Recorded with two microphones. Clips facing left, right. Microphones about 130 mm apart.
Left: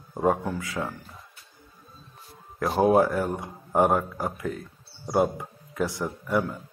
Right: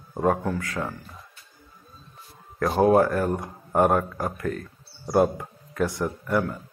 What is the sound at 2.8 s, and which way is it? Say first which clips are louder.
A man's voice: right 1 dB; 15° left (ahead or behind).